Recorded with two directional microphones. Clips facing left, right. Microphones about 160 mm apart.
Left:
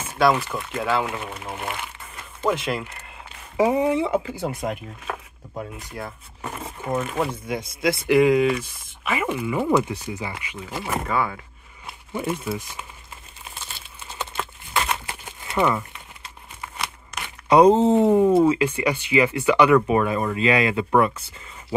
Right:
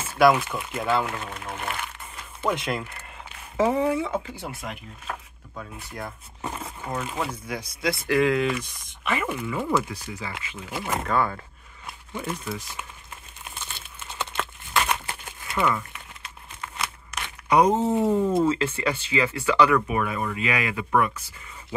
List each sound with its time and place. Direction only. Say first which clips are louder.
0.2 s speech: right 1 dB; centre (ahead or behind); by 4.0 s 15° left (ahead or behind)
4.4 s speech: left 8 dB; 45° left (ahead or behind)
5.9 s speech: left 2 dB; 5° left (ahead or behind)
7.2 s speech: left 5 dB; 25° left (ahead or behind)
10.6 s speech: left 1 dB; centre (ahead or behind)
11.1 s a sound: even; 5° left (ahead or behind)
13.4 s crumpling: even; 5° left (ahead or behind)
15.5 s speech: left 3 dB; 25° left (ahead or behind)
17.1 s a sound: left 1 dB; 5° right (ahead or behind)
17.5 s speech: left 6 dB; 30° left (ahead or behind)
19.9 s speech: left 6 dB; 30° left (ahead or behind)